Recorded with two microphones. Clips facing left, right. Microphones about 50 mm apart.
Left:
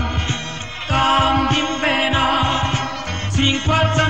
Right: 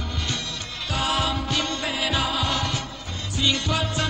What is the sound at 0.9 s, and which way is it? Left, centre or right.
Music, left.